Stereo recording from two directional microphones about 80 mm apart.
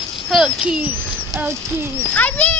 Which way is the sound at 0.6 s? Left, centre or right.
Centre.